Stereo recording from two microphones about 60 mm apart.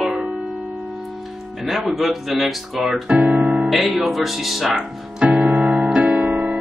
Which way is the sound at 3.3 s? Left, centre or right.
Centre.